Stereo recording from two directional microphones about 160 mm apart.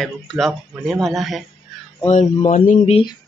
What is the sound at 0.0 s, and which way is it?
Speech, centre (ahead or behind).